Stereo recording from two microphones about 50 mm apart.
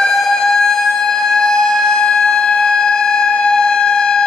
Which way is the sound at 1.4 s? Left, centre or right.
Centre.